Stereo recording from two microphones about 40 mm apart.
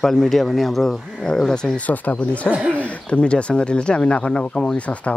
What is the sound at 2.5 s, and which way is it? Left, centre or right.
Speech, right.